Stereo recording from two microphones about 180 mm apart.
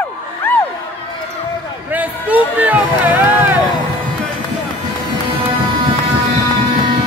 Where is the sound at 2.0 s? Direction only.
10° right (ahead or behind).